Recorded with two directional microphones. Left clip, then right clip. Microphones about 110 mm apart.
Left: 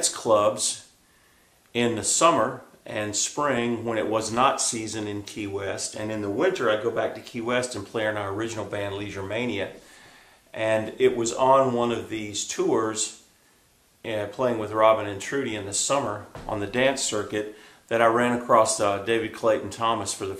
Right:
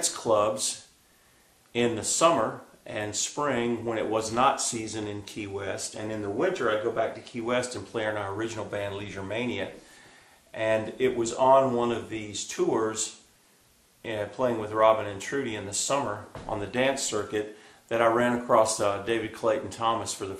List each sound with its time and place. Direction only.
0.0 s speech: 30° left (ahead or behind)